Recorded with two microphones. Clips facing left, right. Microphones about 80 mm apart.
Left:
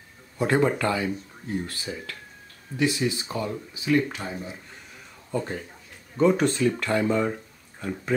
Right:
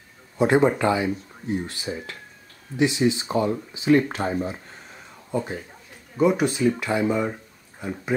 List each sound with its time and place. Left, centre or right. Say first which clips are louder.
0.4 s speech: right 4 dB; centre; by 4.6 s right
5.3 s speech: right 2 dB; centre